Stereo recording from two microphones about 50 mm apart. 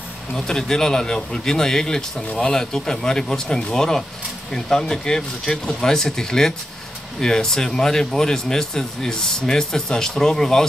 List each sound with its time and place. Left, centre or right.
0.5 s speech: centre